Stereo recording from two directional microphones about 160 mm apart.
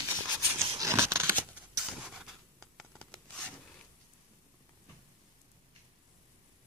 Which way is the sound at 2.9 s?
5° left (ahead or behind).